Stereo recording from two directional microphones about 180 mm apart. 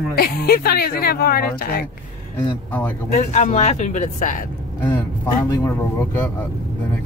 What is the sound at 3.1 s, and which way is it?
Speech, 40° left (ahead or behind).